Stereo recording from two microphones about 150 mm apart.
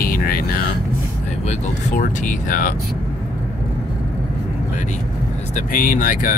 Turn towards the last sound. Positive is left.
turn(degrees=65)  # may be behind; listen again after turning